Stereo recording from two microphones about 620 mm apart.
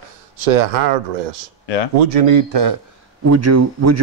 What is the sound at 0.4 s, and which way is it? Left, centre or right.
Speech, right.